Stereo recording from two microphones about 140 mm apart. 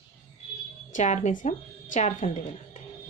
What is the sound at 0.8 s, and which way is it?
A woman's voice, 65° left (ahead or behind).